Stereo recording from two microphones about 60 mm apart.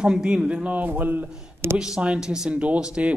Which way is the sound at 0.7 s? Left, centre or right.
Right.